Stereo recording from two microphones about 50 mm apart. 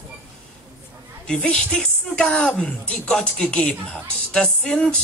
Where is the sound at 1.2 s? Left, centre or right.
Centre.